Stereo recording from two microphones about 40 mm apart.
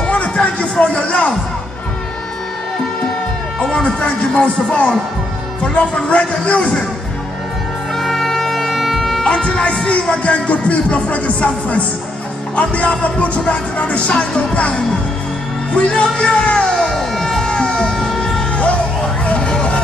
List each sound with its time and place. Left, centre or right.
0.0 s music: left
3.5 s speech: left
7.9 s music: centre
9.2 s speech: left
16.7 s music: centre
17.5 s a sound: left
19.2 s vehicle: left